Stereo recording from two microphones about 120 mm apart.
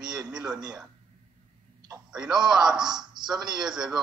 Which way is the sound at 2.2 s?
35° right (ahead or behind).